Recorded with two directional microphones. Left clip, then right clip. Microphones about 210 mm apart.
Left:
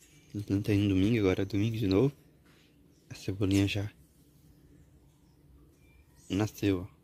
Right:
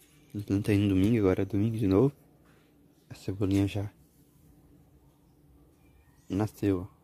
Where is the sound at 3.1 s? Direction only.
10° right (ahead or behind).